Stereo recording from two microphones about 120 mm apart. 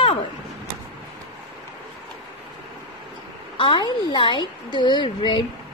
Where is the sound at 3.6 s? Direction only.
45° left (ahead or behind).